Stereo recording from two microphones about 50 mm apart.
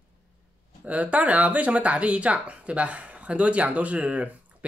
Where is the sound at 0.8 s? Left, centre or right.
Right.